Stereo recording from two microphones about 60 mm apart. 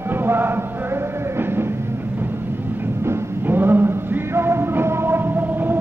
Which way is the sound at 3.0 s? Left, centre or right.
Right.